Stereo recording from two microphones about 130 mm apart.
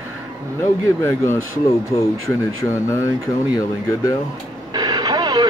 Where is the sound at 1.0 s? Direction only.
20° left (ahead or behind).